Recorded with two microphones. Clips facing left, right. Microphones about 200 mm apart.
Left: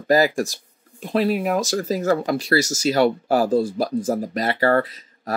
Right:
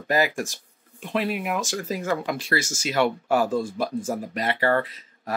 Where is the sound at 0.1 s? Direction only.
35° left (ahead or behind).